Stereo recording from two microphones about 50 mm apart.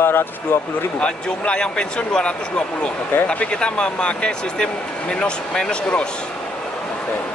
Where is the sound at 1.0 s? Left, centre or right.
Left.